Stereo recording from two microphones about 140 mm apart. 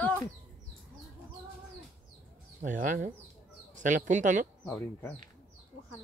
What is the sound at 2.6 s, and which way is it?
Speech, 65° right (ahead or behind).